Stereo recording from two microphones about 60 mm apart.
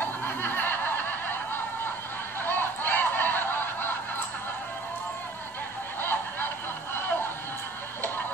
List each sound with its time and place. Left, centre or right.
0.0 s snicker: left
5.9 s snicker: left